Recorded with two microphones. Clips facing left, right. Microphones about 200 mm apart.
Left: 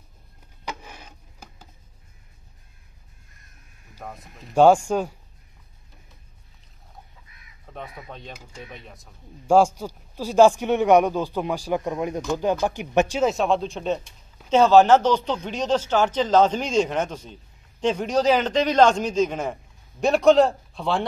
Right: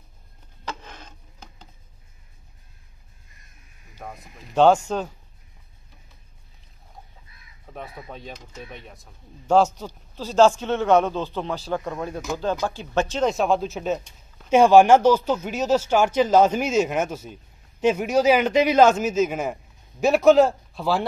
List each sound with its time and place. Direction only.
0.7 s rub: 10° left (ahead or behind)
4.0 s speech: centre (ahead or behind)
4.6 s a man's voice: 10° left (ahead or behind)
7.7 s a sound: 5° right (ahead or behind)
8.1 s speech: centre (ahead or behind)
9.6 s a man's voice: 10° left (ahead or behind)
13.3 s speech: centre (ahead or behind)